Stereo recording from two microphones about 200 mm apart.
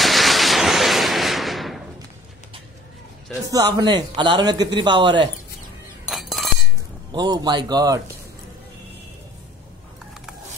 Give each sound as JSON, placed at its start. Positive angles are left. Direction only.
{"t": 0.0, "sound": "a sound", "side_deg": 0}
{"t": 3.5, "sound": "a man's voice", "side_deg": -20}
{"t": 6.0, "sound": "chink", "side_deg": 0}
{"t": 7.1, "sound": "a man's voice", "side_deg": -20}